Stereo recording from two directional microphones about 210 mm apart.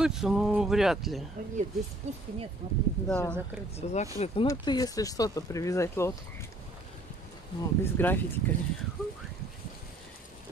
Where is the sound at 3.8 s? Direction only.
30° left (ahead or behind).